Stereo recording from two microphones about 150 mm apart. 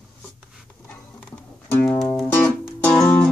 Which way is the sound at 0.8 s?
10° left (ahead or behind).